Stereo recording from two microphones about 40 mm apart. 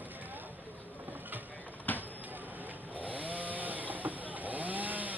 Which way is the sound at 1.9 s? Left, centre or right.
Left.